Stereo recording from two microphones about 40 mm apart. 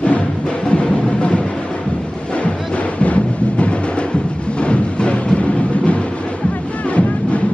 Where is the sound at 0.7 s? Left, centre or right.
Left.